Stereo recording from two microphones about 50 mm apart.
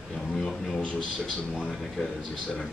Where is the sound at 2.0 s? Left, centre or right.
Left.